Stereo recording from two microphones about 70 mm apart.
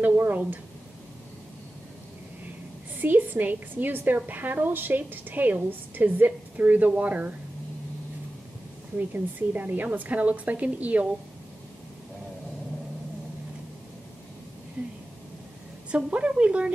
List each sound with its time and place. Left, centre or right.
0.0 s a woman's voice: right
3.0 s a woman's voice: right
8.9 s a woman's voice: right
15.9 s a woman's voice: centre